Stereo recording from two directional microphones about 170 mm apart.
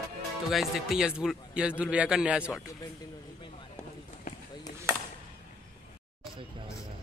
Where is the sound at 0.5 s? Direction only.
Centre (ahead or behind).